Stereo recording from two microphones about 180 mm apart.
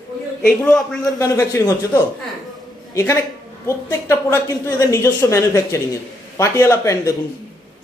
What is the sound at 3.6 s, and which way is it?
A woman's voice, 15° left (ahead or behind).